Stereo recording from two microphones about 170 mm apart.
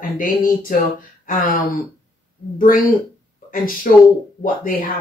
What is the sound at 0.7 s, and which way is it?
Speech, 50° left (ahead or behind).